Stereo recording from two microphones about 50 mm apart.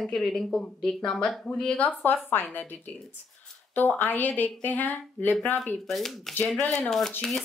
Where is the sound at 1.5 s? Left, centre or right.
Left.